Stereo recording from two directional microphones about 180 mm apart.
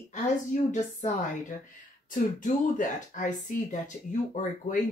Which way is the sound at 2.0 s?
45° left (ahead or behind).